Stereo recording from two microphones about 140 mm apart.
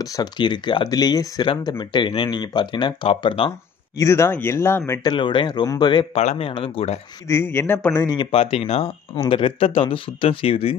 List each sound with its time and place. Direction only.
0.0 s speech: 30° left (ahead or behind)
4.0 s speech: 20° left (ahead or behind)
5.0 s speech: 35° left (ahead or behind)
6.1 s speech: 45° left (ahead or behind)
7.2 s speech: 20° left (ahead or behind)
8.3 s speech: 40° left (ahead or behind)